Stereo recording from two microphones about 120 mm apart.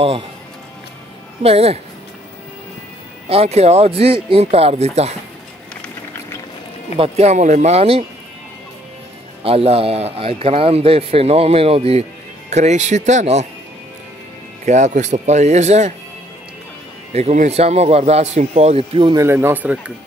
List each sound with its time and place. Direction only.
1.4 s a man's voice: 55° right (ahead or behind)
3.3 s a man's voice: 55° right (ahead or behind)
7.0 s a man's voice: 60° right (ahead or behind)
9.4 s a man's voice: 55° right (ahead or behind); by 13.5 s 70° right (ahead or behind)
14.7 s speech: 80° right
17.1 s a man's voice: 70° right (ahead or behind)
19.1 s speech: 20° right (ahead or behind)